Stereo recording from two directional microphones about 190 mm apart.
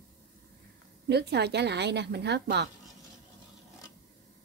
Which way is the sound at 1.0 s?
60° right (ahead or behind).